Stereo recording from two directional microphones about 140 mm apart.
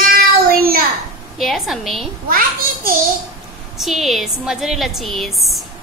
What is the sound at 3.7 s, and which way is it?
A woman's voice, centre (ahead or behind).